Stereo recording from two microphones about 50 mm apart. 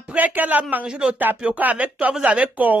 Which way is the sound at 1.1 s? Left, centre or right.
Right.